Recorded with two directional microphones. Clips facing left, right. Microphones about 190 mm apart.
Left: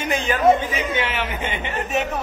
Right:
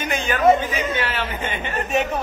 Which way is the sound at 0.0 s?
30° left (ahead or behind).